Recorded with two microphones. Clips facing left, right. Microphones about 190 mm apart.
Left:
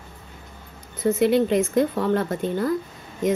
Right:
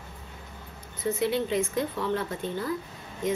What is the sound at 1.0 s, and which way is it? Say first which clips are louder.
A woman's voice: left 8 dB; 50° left (ahead or behind).